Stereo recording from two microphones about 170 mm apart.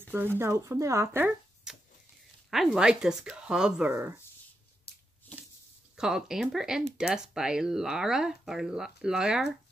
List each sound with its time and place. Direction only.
0.0 s a sound: 10° right (ahead or behind)
0.4 s speech: 15° right (ahead or behind)
1.0 s speech: 5° right (ahead or behind)
4.9 s shuffling cards: 70° left (ahead or behind)
5.9 s speech: 5° right (ahead or behind)